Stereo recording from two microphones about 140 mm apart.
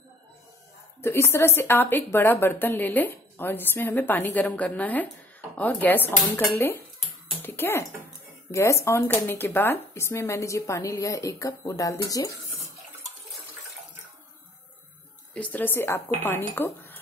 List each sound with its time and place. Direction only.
1.0 s speech: 20° left (ahead or behind)
15.3 s speech: 10° left (ahead or behind)